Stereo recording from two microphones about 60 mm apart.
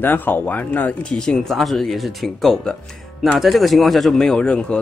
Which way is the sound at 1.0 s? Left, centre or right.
Centre.